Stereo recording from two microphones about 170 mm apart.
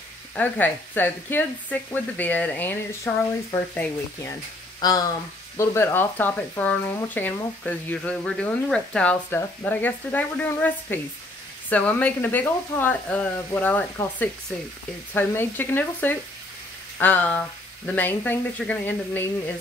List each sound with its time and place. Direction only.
0.4 s speech: 10° left (ahead or behind)
4.7 s speech: 20° left (ahead or behind)
15.1 s speech: 10° left (ahead or behind)